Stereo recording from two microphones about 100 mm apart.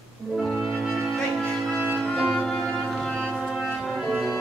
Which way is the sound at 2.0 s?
10° left (ahead or behind).